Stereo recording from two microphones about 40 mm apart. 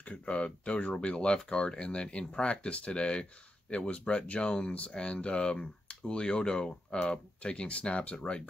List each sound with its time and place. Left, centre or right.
0.1 s speech: left
8.2 s speech: centre